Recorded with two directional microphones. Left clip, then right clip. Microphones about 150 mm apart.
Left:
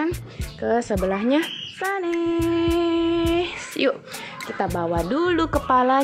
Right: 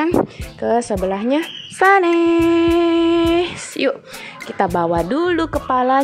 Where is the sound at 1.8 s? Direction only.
40° right (ahead or behind).